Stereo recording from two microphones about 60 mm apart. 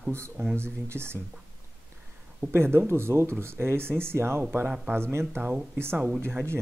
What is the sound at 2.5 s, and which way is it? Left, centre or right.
Speech, right.